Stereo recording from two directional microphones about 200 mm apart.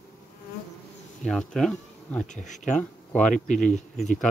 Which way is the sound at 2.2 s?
35° left (ahead or behind).